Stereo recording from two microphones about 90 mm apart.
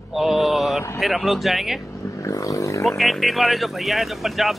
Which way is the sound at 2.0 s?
35° left (ahead or behind).